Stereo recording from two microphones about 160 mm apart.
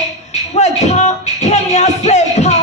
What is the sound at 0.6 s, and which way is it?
Music, 45° left (ahead or behind).